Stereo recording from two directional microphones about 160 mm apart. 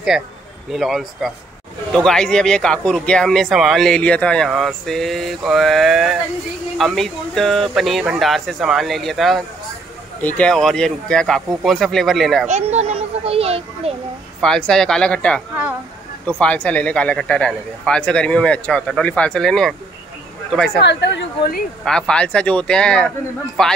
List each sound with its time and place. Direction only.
0.1 s speech: 5° right (ahead or behind)
12.4 s a child's voice: 45° right (ahead or behind)
14.4 s speech: 5° left (ahead or behind)
20.8 s speech: 90° left
21.8 s speech: 5° left (ahead or behind)